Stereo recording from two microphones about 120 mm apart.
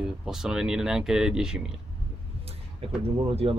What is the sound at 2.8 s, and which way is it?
Speech, 50° right (ahead or behind).